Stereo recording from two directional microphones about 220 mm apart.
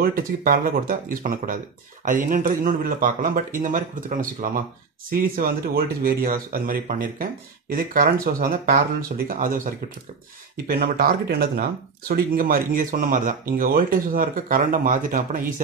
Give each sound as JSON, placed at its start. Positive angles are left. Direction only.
{"t": 0.0, "sound": "speech", "side_deg": -40}